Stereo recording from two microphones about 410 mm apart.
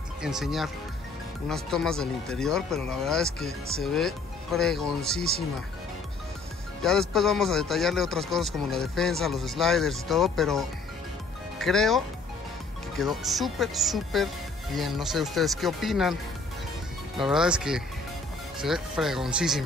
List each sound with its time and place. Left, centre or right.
0.2 s speech: centre
6.8 s speech: centre
17.2 s speech: centre